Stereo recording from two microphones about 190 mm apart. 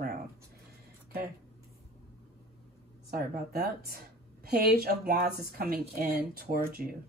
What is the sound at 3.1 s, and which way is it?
A woman's voice, 55° right (ahead or behind).